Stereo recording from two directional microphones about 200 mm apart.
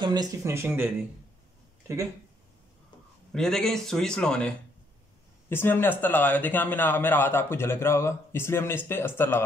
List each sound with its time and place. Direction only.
0.0 s speech: 20° right (ahead or behind)
3.3 s speech: 5° left (ahead or behind)